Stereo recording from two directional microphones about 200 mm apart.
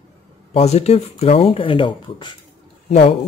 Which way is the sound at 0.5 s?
30° left (ahead or behind).